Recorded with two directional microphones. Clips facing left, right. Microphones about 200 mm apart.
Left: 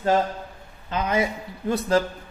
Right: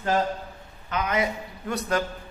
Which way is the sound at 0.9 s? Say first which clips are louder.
Left 2 dB; 25° left (ahead or behind).